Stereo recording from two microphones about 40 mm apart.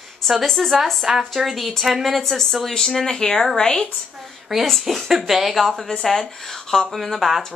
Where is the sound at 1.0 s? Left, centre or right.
Centre.